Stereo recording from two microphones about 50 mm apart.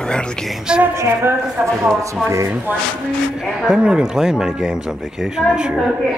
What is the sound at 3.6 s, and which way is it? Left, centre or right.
Speech, centre.